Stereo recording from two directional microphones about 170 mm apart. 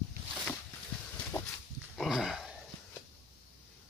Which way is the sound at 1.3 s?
20° left (ahead or behind).